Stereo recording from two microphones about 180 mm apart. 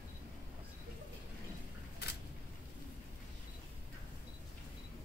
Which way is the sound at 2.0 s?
60° left (ahead or behind).